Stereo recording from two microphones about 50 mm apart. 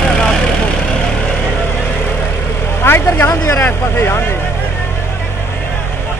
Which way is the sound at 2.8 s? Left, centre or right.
Left.